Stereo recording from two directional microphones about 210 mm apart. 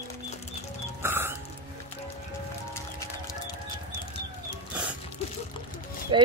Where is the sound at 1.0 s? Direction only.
10° right (ahead or behind).